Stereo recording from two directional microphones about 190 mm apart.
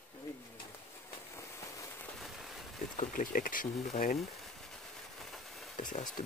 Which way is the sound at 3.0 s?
45° left (ahead or behind).